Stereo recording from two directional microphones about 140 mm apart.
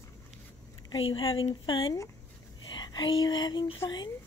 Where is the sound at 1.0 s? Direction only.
40° left (ahead or behind).